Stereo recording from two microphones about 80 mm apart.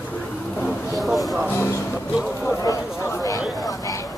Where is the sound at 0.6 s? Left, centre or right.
Centre.